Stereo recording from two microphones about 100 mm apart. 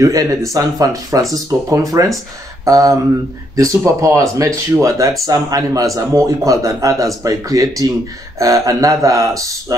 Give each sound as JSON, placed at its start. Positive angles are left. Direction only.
{"t": 0.0, "sound": "speech", "side_deg": -35}